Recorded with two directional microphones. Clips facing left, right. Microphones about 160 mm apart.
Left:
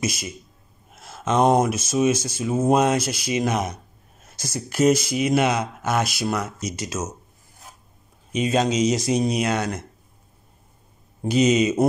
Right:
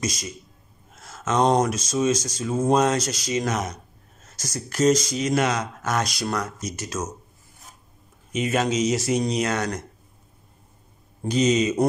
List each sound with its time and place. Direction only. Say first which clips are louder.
0.0 s speech: left 2 dB; 10° left (ahead or behind)
0.9 s a sound: left 2 dB; 10° left (ahead or behind)
1.7 s speech: left 2 dB; 10° left (ahead or behind)
8.3 s speech: left 2 dB; 15° left (ahead or behind)
11.2 s speech: left 2 dB; 10° left (ahead or behind)